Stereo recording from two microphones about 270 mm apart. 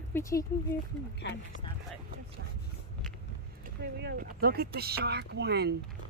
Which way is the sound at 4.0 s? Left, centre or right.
Right.